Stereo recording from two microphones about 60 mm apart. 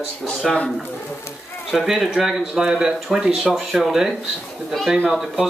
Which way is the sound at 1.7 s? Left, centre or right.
Centre.